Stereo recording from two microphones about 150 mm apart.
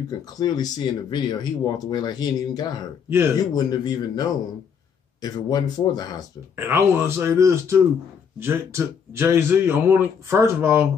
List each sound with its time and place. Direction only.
0.1 s speech: 25° left (ahead or behind)
6.5 s a man's voice: 15° right (ahead or behind)